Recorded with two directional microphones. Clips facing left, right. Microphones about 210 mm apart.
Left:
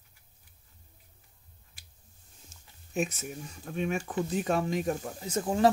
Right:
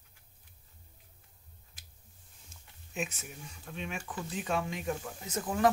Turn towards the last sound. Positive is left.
turn(degrees=30)  # may be behind; listen again after turning